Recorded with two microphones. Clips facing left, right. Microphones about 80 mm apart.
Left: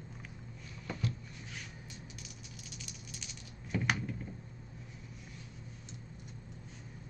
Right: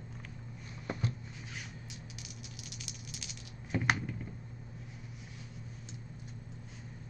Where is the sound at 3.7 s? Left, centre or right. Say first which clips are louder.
Right 1 dB; right.